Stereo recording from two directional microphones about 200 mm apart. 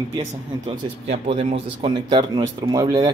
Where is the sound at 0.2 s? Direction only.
30° right (ahead or behind).